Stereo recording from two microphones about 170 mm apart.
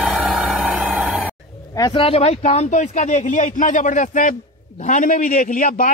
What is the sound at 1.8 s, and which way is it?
Speech, 35° left (ahead or behind).